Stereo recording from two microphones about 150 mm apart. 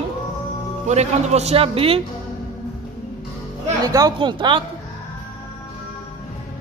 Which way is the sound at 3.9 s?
25° right (ahead or behind).